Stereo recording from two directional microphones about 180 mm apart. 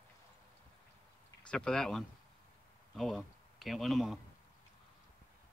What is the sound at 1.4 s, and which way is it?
Speech, 5° left (ahead or behind).